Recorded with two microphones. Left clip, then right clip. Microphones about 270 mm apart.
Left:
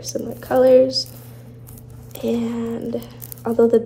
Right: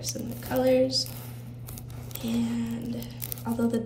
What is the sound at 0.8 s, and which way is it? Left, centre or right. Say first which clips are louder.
Speech: left 7 dB; centre.